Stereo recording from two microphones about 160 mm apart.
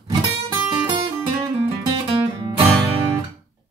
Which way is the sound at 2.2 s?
30° right (ahead or behind).